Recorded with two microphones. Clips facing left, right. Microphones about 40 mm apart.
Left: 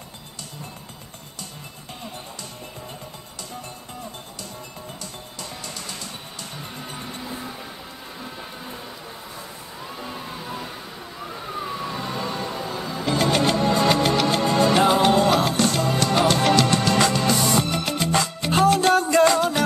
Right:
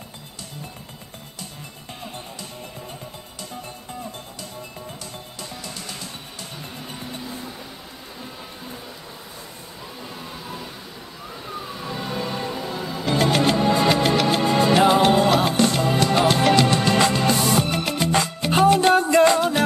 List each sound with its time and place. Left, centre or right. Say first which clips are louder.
10.0 s vehicle: left 2 dB; centre
12.1 s music: right 1 dB; centre
18.9 s music: right 1 dB; right